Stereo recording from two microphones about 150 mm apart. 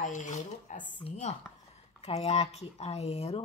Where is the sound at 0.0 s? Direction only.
55° left (ahead or behind).